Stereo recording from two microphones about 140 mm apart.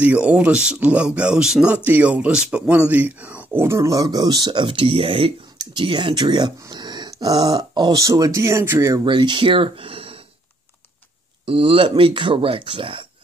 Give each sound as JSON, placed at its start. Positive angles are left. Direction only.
{"t": 0.0, "sound": "speech", "side_deg": -10}
{"t": 9.0, "sound": "speech", "side_deg": -35}
{"t": 11.4, "sound": "speech", "side_deg": -40}